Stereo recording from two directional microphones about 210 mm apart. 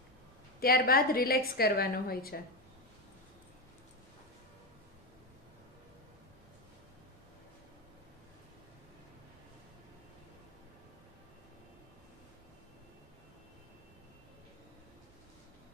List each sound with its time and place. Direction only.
0.6 s a woman's voice: 45° left (ahead or behind)